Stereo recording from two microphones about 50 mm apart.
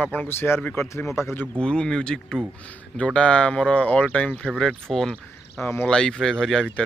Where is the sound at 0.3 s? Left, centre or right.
Left.